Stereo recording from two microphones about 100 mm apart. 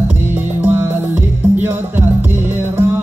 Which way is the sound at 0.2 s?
20° right (ahead or behind).